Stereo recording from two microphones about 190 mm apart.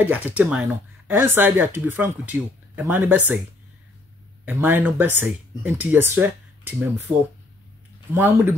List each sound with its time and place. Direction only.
0.4 s speech: 5° right (ahead or behind)
4.5 s speech: 10° right (ahead or behind)
7.1 s speech: 20° right (ahead or behind)